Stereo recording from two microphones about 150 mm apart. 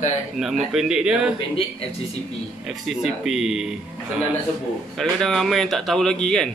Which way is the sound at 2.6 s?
5° right (ahead or behind).